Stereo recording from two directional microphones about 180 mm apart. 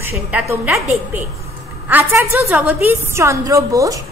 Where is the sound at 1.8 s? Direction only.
10° right (ahead or behind).